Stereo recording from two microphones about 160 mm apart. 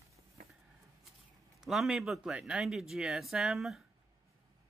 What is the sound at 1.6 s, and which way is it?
Speech, centre (ahead or behind).